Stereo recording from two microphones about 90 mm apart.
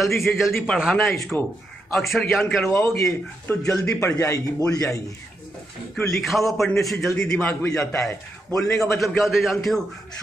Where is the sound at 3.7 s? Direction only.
35° left (ahead or behind).